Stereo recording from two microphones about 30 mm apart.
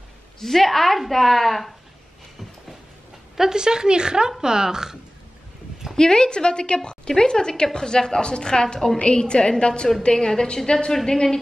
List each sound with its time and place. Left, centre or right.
0.4 s a woman's voice: centre
3.3 s speech: right
5.9 s a woman's voice: left
10.1 s a woman's voice: centre
10.7 s a woman's voice: left